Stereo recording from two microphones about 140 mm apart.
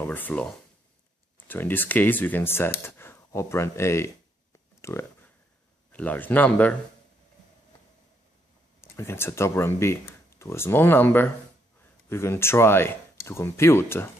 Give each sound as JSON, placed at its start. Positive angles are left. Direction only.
{"t": 0.0, "sound": "speech", "side_deg": 10}
{"t": 4.8, "sound": "a sound", "side_deg": 20}
{"t": 5.9, "sound": "speech", "side_deg": 10}
{"t": 8.8, "sound": "speech", "side_deg": 20}